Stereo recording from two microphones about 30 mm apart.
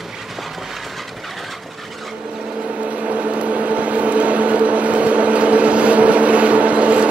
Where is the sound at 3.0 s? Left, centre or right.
Right.